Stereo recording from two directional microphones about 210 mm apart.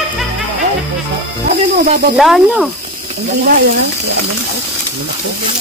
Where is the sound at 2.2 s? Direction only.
Centre (ahead or behind).